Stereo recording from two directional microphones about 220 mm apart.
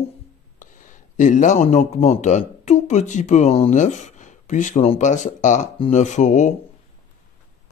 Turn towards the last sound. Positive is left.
turn(degrees=35)  # may be behind; listen again after turning